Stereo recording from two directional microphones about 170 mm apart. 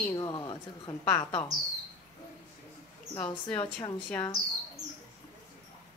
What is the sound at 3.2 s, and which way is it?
Speech, 10° left (ahead or behind).